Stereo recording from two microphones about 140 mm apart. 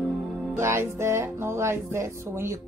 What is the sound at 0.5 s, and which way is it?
Music, 20° right (ahead or behind).